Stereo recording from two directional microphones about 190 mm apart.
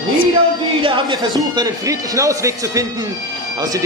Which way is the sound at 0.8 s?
25° right (ahead or behind).